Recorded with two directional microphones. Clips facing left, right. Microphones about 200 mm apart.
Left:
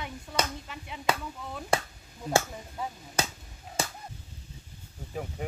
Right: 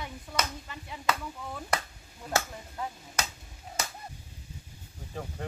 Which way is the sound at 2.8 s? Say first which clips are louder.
Left 1 dB; 10° left (ahead or behind).